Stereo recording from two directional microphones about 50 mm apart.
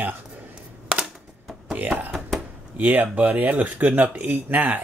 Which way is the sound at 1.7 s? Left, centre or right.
Right.